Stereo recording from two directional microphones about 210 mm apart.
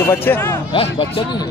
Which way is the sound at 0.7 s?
25° left (ahead or behind).